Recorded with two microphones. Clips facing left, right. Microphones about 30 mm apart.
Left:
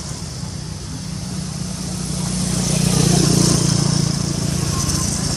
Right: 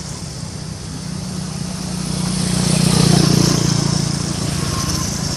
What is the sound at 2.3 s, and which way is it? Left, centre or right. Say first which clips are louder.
Vehicle: right 3 dB; right.